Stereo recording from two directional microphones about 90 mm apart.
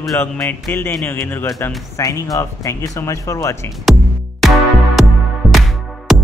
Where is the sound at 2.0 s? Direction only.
40° left (ahead or behind).